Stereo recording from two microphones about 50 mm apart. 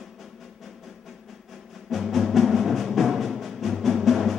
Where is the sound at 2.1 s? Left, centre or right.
Centre.